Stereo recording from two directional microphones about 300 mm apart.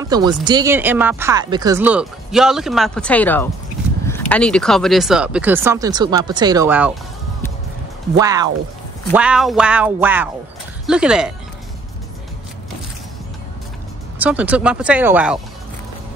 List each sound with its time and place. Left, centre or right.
0.1 s speech: centre
8.2 s speech: centre
14.1 s speech: centre